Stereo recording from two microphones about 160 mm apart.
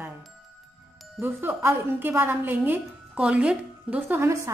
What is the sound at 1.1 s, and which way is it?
A woman's voice, 10° right (ahead or behind).